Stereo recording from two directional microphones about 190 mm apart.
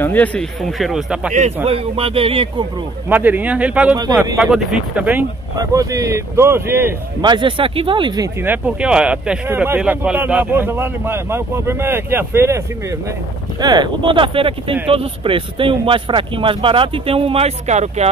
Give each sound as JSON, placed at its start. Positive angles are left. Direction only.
{"t": 0.0, "sound": "speech", "side_deg": 10}
{"t": 1.3, "sound": "speech", "side_deg": -35}
{"t": 3.1, "sound": "speech", "side_deg": -10}
{"t": 5.6, "sound": "speech", "side_deg": -20}
{"t": 7.2, "sound": "speech", "side_deg": -25}
{"t": 8.4, "sound": "speech", "side_deg": -10}